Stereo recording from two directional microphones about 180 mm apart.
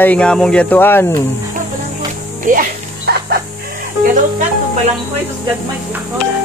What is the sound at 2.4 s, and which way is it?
Music, 55° right (ahead or behind).